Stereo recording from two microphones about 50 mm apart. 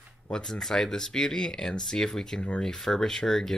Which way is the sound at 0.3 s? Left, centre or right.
Centre.